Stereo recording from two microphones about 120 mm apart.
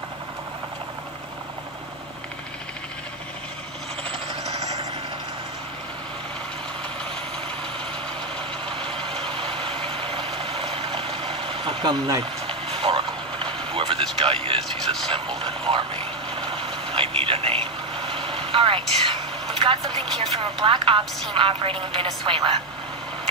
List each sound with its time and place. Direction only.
4.5 s vehicle: 65° right (ahead or behind)
9.2 s vehicle: 45° right (ahead or behind)
12.4 s vehicle: 50° right (ahead or behind)
13.7 s a sound: 50° right (ahead or behind)
15.0 s vehicle: 50° right (ahead or behind)
20.0 s speech: 55° right (ahead or behind)
20.5 s speech: 45° right (ahead or behind)